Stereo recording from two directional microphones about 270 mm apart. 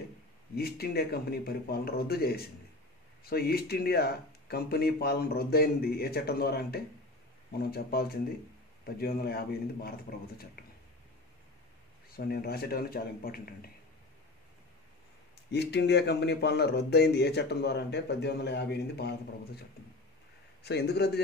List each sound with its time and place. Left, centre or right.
0.6 s speech: left
12.1 s speech: left
15.5 s speech: left
20.6 s speech: left